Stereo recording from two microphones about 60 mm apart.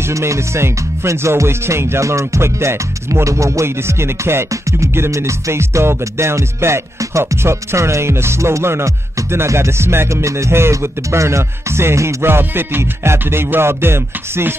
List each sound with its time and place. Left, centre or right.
0.0 s music: right
3.6 s music: right
4.5 s music: right
12.3 s music: right